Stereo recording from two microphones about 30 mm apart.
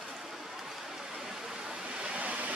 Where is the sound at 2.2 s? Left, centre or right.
Right.